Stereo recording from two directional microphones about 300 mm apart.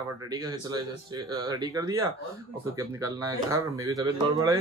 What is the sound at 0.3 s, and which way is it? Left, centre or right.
Speech, centre.